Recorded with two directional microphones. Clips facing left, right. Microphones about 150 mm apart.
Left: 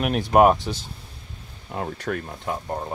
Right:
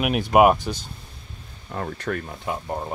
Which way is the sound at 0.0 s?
5° right (ahead or behind).